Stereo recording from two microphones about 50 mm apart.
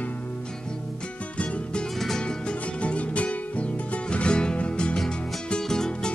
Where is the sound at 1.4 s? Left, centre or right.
Left.